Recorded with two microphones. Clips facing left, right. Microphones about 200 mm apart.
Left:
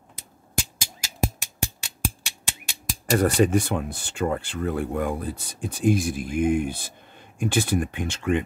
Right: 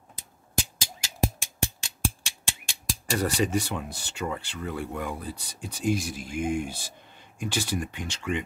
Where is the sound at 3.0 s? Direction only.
50° left (ahead or behind).